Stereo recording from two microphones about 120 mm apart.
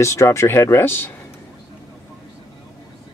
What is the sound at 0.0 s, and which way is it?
Speech, 25° left (ahead or behind).